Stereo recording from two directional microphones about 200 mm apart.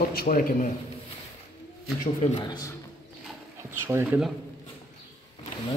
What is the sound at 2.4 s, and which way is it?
Speech, 20° left (ahead or behind).